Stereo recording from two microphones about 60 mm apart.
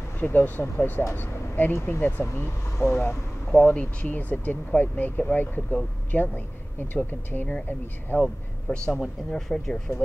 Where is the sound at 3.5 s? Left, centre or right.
Left.